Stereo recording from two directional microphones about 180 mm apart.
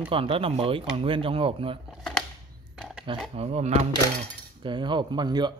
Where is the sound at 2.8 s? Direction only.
5° right (ahead or behind).